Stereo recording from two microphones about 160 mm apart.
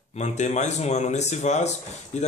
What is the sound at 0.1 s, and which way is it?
Speech, 45° left (ahead or behind).